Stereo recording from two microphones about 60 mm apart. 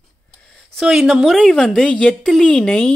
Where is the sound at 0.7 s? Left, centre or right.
Centre.